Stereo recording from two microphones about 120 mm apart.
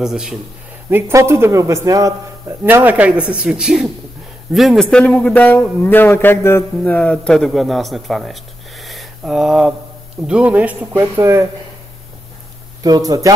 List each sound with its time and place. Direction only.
0.0 s speech: 5° right (ahead or behind)
0.8 s a man's voice: 20° right (ahead or behind)
2.6 s a man's voice: 15° right (ahead or behind); by 4.8 s centre (ahead or behind)
4.9 s a man's voice: 10° left (ahead or behind); by 11.0 s 10° right (ahead or behind)
11.0 s a man's voice: 20° right (ahead or behind)
12.8 s speech: 30° right (ahead or behind)